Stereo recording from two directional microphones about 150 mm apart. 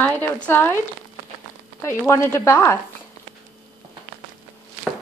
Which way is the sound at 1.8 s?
15° left (ahead or behind).